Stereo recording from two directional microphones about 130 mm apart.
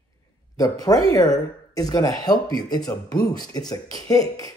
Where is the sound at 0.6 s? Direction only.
30° left (ahead or behind).